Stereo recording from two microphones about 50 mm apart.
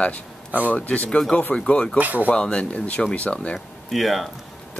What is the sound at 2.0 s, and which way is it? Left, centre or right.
Speech, right.